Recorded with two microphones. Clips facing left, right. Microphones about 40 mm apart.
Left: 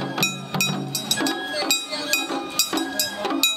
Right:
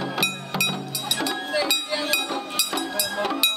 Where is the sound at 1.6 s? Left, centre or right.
Centre.